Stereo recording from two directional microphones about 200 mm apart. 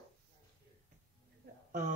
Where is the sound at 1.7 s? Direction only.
40° right (ahead or behind).